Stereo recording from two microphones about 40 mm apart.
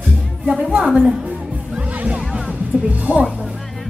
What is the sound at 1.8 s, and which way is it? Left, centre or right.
Music, right.